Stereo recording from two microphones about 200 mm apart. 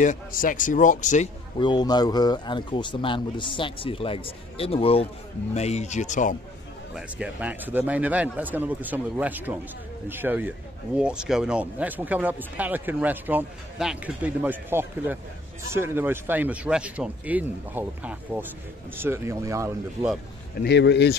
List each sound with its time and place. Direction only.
0.0 s a man's voice: 40° left (ahead or behind)
1.6 s a man's voice: 20° left (ahead or behind); by 6.3 s 40° left (ahead or behind)
7.0 s speech: 5° right (ahead or behind)
20.6 s speech: 60° left (ahead or behind)